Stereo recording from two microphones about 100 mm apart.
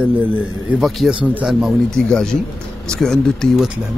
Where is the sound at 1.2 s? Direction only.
15° right (ahead or behind).